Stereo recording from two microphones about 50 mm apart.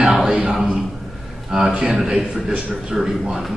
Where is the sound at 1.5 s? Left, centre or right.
Centre.